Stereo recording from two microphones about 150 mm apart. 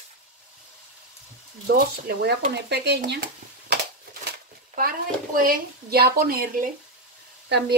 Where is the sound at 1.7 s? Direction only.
90° right.